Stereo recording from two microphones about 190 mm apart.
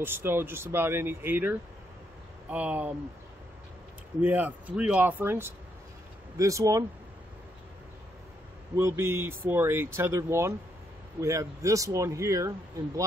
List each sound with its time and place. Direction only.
0.0 s speech: 10° right (ahead or behind)
4.2 s speech: 10° right (ahead or behind)
8.7 s speech: 15° right (ahead or behind)